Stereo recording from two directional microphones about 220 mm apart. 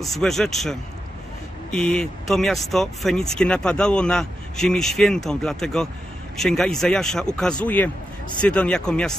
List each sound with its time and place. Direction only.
0.0 s speech: centre (ahead or behind)